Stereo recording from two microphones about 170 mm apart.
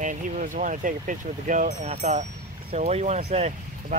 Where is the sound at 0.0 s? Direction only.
50° right (ahead or behind).